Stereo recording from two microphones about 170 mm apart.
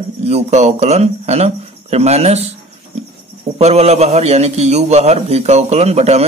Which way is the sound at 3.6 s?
40° right (ahead or behind).